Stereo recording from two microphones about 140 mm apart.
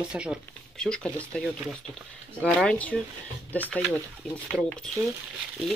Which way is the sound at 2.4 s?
5° left (ahead or behind).